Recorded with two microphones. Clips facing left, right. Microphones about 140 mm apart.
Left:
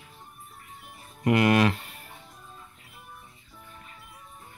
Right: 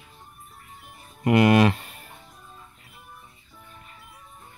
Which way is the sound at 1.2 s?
15° right (ahead or behind).